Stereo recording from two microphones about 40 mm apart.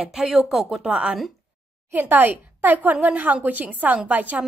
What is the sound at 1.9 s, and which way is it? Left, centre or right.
A woman's voice, right.